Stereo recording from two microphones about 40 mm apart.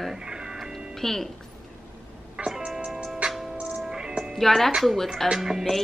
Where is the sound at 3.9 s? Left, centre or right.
Right.